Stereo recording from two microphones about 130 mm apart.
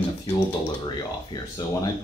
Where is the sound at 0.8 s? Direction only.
35° left (ahead or behind).